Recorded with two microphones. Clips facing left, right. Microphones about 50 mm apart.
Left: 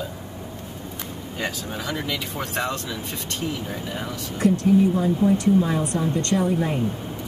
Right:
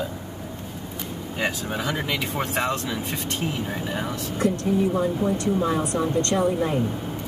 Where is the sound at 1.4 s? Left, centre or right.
Right.